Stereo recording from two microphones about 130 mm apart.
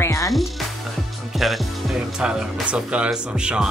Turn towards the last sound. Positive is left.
turn(degrees=-5)  # may be behind; listen again after turning